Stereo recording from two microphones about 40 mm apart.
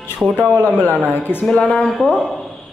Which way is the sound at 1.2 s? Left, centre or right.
Left.